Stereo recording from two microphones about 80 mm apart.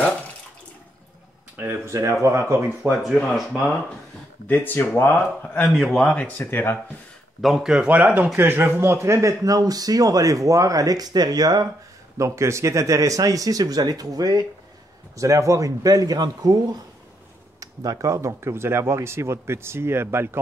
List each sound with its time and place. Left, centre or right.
1.9 s speech: right
2.8 s speech: centre
4.5 s speech: left
5.4 s speech: centre
5.7 s speech: centre
5.9 s speech: centre
7.4 s speech: centre
7.9 s speech: right
12.2 s speech: right
17.6 s speech: right